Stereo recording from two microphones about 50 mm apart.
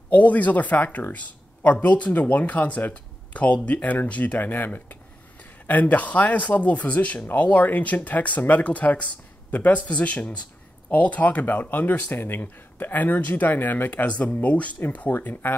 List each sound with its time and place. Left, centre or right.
0.1 s speech: left